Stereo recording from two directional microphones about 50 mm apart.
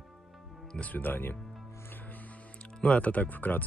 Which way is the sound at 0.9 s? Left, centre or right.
Left.